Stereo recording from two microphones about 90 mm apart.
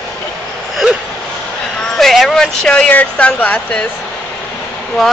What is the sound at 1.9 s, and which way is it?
Speech, 5° left (ahead or behind).